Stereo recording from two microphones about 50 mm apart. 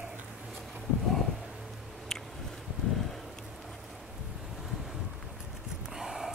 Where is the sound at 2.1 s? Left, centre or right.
Centre.